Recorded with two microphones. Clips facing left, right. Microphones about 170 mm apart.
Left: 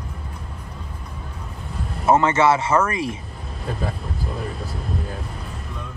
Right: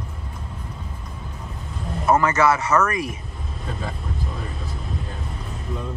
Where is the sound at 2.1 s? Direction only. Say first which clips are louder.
Left 2 dB; 25° left (ahead or behind).